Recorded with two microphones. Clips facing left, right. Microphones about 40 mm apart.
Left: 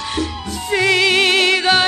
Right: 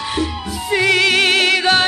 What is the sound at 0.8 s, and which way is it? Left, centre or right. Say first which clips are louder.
Music: even; right.